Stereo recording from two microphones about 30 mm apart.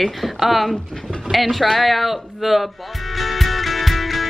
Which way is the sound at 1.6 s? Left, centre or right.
Centre.